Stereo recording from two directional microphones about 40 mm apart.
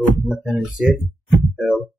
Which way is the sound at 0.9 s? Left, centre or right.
Centre.